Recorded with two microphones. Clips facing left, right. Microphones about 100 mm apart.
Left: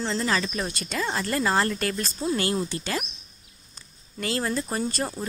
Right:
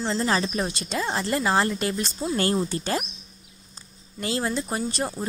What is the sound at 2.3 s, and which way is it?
Speech, 35° right (ahead or behind).